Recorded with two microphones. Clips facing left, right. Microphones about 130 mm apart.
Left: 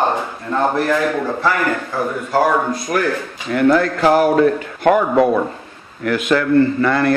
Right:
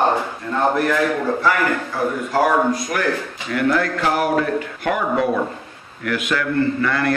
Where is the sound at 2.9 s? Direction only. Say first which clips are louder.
Left 3 dB; 35° left (ahead or behind).